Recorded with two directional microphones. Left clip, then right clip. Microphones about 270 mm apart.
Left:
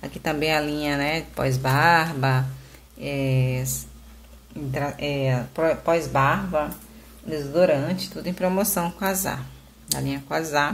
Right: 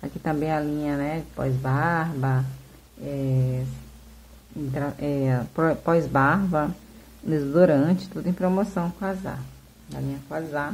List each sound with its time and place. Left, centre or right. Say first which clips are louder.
0.0 s speech: left 2 dB; centre
4.7 s speech: left 2 dB; centre